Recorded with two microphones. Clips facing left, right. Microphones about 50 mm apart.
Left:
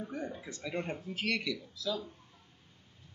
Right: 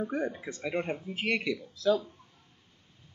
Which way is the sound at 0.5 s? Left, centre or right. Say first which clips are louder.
Right 6 dB; right.